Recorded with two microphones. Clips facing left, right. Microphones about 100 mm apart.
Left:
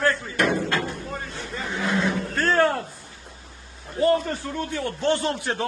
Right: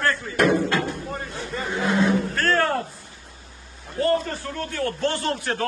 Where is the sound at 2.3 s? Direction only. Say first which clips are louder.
Left 1 dB; 15° left (ahead or behind).